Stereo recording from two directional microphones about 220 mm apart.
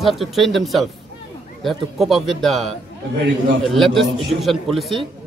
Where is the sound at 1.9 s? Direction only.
Centre (ahead or behind).